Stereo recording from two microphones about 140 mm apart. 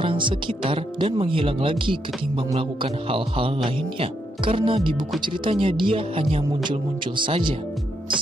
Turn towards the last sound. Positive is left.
turn(degrees=-35)  # may be behind; listen again after turning